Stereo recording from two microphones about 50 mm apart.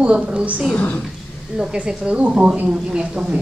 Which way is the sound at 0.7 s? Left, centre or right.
Left.